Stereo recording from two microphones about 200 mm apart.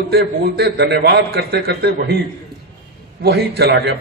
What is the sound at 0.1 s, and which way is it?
A man's voice, 55° right (ahead or behind).